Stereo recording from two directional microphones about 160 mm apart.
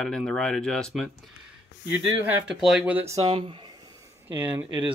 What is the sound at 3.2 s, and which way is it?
Speech, 35° right (ahead or behind).